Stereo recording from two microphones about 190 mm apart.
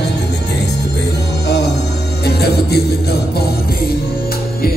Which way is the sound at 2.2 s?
60° left (ahead or behind).